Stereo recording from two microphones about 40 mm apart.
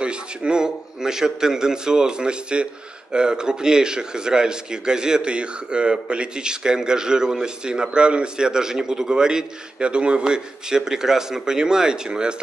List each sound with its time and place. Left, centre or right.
0.0 s a man's voice: right